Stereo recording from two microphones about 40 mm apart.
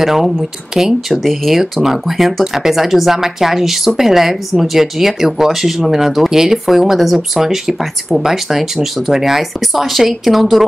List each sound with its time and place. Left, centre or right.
0.0 s a woman's voice: centre